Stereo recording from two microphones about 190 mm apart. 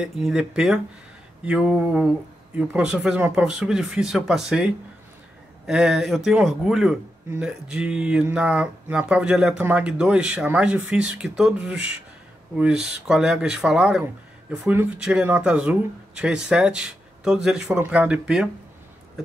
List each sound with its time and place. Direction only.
0.0 s speech: 5° right (ahead or behind)